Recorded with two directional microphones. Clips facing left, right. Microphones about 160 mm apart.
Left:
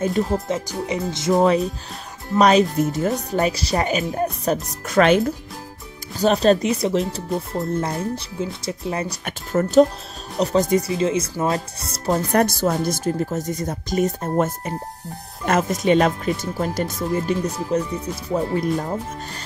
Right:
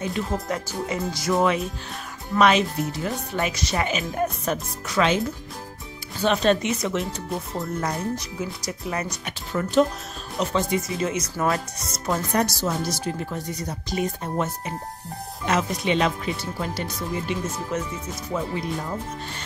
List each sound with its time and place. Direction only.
0.2 s speech: 40° left (ahead or behind)
0.8 s speech: 20° left (ahead or behind)
1.4 s speech: 35° left (ahead or behind)
4.8 s speech: 55° left (ahead or behind)
6.1 s speech: 40° left (ahead or behind)
9.2 s speech: 45° left (ahead or behind)
12.3 s speech: 55° left (ahead or behind); by 17.8 s 35° left (ahead or behind)
18.3 s speech: 45° left (ahead or behind)